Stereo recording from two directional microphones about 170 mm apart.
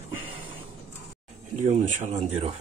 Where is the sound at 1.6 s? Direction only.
45° right (ahead or behind).